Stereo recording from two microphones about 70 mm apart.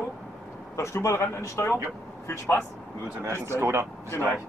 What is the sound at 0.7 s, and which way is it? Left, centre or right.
Speech, left.